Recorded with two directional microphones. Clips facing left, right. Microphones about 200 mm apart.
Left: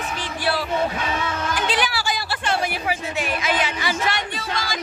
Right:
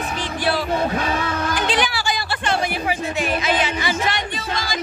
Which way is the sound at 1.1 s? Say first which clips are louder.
Right 3 dB; 35° right (ahead or behind).